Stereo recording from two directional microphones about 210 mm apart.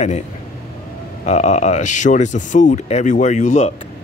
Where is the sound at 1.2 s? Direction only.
35° left (ahead or behind).